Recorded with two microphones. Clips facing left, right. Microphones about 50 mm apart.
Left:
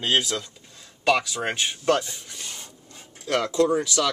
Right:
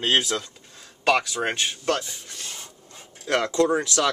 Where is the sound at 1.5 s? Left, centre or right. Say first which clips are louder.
Left 5 dB; centre.